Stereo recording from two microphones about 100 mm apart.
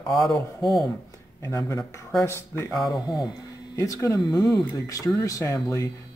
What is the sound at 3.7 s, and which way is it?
Speech, 30° left (ahead or behind).